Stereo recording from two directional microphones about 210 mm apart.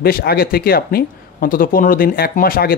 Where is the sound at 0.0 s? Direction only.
45° left (ahead or behind).